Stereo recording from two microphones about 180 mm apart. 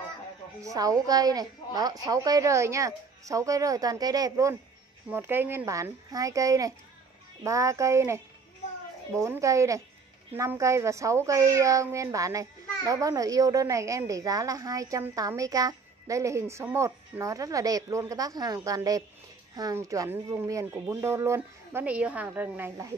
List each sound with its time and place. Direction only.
0.6 s a woman's voice: 20° right (ahead or behind)